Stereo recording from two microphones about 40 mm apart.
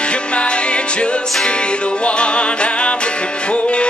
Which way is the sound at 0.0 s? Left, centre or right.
Left.